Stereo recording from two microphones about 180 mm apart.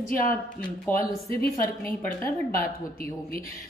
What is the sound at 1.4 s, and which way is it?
A woman's voice, 50° left (ahead or behind).